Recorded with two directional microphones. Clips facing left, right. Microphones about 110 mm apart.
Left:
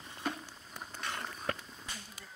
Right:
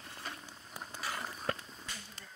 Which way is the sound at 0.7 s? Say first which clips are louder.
Even; 5° right (ahead or behind).